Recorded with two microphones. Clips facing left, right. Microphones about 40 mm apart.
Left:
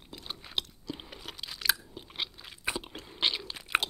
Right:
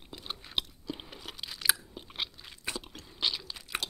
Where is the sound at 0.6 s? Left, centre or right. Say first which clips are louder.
Right 1 dB; centre.